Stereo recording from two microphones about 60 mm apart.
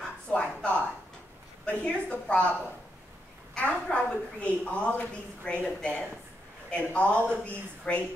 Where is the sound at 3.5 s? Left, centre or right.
Centre.